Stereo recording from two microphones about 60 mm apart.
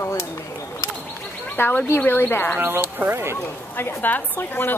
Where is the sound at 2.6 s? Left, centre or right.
Right.